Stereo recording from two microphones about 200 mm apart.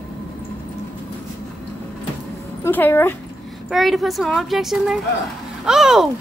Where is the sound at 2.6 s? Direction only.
10° left (ahead or behind).